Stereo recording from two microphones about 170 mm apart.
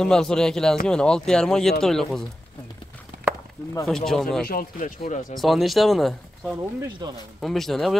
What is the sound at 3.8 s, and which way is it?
Speech, centre (ahead or behind).